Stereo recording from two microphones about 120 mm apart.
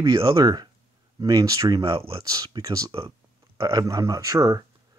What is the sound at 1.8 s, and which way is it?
Speech, 50° right (ahead or behind).